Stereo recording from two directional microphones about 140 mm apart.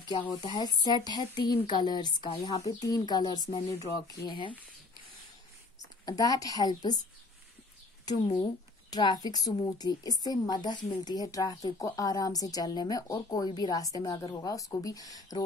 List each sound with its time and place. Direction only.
0.3 s a woman's voice: 30° left (ahead or behind)
6.0 s a woman's voice: 25° left (ahead or behind)
8.2 s a woman's voice: 35° left (ahead or behind)